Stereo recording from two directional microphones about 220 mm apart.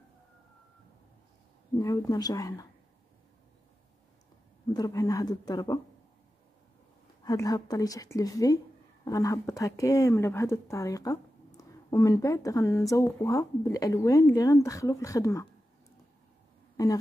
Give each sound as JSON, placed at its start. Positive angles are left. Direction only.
{"t": 1.8, "sound": "speech", "side_deg": 15}
{"t": 4.7, "sound": "speech", "side_deg": 15}
{"t": 7.2, "sound": "speech", "side_deg": 15}
{"t": 16.7, "sound": "speech", "side_deg": 15}